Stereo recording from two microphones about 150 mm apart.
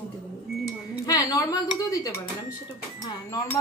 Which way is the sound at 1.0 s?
25° left (ahead or behind).